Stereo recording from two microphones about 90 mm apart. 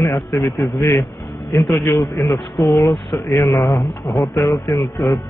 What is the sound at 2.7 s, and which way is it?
Speech, 45° left (ahead or behind).